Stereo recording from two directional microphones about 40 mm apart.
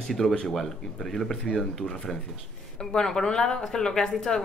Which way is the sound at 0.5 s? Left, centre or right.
Centre.